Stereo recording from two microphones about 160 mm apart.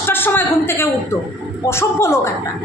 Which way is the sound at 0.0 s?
15° left (ahead or behind).